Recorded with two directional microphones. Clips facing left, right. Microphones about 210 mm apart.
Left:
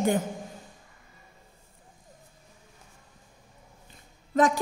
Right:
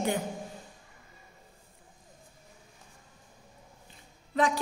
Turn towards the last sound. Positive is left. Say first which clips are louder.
# left 4 dB
turn(degrees=50)  # may be behind; listen again after turning